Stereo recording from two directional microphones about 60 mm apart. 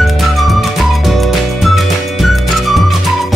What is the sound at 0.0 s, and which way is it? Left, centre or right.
Music, centre.